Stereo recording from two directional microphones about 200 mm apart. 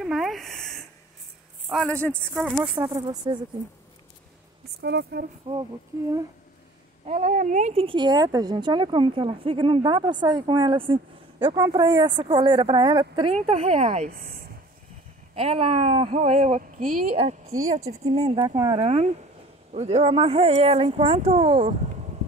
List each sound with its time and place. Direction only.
0.0 s a sound: centre (ahead or behind)
1.7 s a man's voice: 5° left (ahead or behind)
2.1 s speech: 5° right (ahead or behind)
2.5 s a woman's voice: 20° right (ahead or behind)
4.8 s speech: 55° right (ahead or behind)
5.5 s a woman's voice: 30° right (ahead or behind)
7.1 s a woman's voice: 35° right (ahead or behind)
15.3 s a woman's voice: 30° right (ahead or behind)